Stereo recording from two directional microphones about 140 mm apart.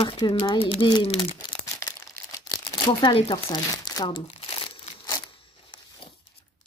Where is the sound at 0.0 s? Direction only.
35° left (ahead or behind).